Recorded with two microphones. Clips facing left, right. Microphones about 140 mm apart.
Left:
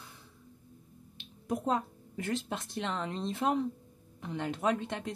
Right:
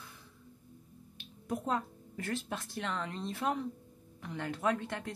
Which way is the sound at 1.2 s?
20° left (ahead or behind).